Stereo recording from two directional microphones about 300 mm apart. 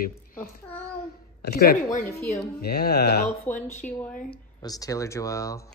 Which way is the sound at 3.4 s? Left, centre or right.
Centre.